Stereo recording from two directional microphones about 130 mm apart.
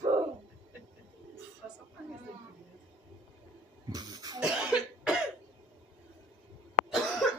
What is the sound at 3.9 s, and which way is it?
Cough, 30° right (ahead or behind).